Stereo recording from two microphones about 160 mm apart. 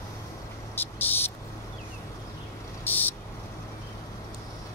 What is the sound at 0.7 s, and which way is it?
Cricket, 10° left (ahead or behind).